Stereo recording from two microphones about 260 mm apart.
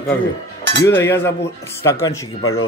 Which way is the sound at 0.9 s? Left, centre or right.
Centre.